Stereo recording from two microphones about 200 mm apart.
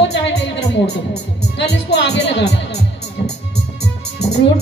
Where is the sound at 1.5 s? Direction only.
60° left (ahead or behind).